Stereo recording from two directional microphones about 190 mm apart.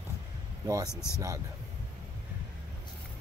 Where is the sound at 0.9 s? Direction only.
15° left (ahead or behind).